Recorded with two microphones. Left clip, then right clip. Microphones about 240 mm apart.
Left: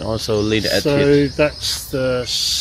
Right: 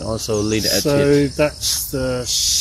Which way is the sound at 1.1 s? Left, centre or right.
Right.